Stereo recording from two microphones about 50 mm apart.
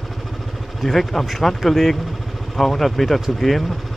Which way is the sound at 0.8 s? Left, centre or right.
Centre.